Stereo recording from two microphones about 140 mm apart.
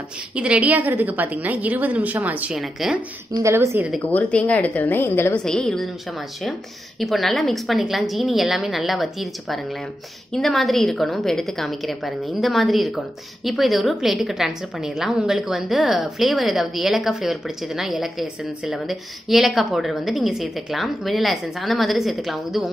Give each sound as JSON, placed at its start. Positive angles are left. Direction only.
{"t": 0.4, "sound": "a woman's voice", "side_deg": -10}
{"t": 3.4, "sound": "a woman's voice", "side_deg": -20}
{"t": 4.0, "sound": "a woman's voice", "side_deg": 10}
{"t": 5.4, "sound": "a woman's voice", "side_deg": 5}
{"t": 7.0, "sound": "a woman's voice", "side_deg": 0}